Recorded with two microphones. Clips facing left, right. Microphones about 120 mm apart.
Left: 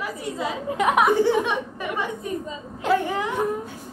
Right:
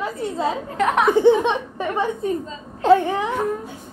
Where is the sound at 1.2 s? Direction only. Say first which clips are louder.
Right 5 dB; 25° right (ahead or behind).